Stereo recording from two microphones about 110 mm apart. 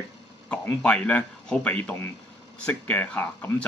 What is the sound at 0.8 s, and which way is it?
A man's voice, 10° left (ahead or behind).